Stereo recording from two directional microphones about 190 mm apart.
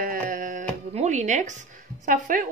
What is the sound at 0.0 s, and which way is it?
Music, 45° right (ahead or behind).